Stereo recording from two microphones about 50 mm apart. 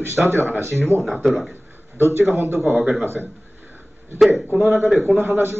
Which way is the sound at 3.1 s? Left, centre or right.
Right.